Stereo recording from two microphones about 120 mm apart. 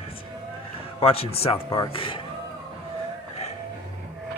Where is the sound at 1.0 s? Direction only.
55° left (ahead or behind).